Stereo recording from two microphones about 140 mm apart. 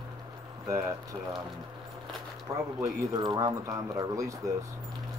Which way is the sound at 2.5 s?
25° right (ahead or behind).